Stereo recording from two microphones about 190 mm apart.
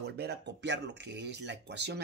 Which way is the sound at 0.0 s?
60° right (ahead or behind).